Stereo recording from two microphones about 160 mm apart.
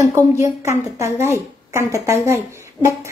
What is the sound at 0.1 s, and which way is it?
A woman's voice, 20° right (ahead or behind).